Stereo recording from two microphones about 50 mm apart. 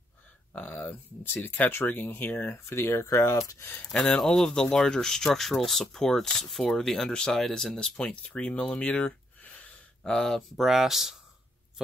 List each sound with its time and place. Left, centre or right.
0.5 s speech: left
3.8 s speech: left
8.0 s speech: left
8.4 s a sound: left
10.1 s speech: centre
10.5 s speech: centre